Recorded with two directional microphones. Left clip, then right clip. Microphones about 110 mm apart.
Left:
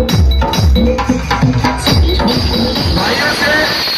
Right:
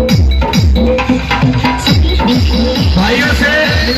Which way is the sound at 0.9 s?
45° left (ahead or behind).